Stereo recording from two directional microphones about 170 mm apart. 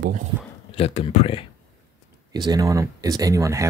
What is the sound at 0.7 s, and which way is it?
Speech, 35° left (ahead or behind).